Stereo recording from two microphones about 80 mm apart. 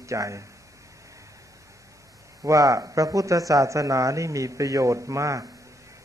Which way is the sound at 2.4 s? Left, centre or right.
Right.